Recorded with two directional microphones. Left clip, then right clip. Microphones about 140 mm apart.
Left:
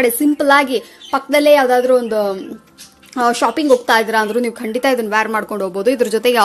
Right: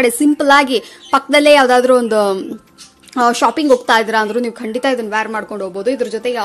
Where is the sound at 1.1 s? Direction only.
20° right (ahead or behind).